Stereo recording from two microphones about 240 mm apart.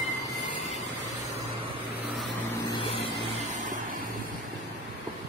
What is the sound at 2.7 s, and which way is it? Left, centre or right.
Vehicle, centre.